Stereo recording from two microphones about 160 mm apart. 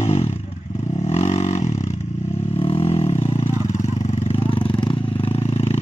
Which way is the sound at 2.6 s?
35° left (ahead or behind).